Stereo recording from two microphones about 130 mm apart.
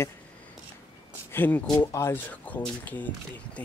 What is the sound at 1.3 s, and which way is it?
Speech, 15° left (ahead or behind).